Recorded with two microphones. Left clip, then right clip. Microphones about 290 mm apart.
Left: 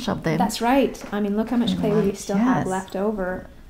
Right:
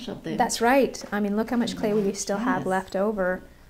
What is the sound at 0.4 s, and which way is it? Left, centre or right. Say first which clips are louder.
A woman's voice: right 1 dB; right.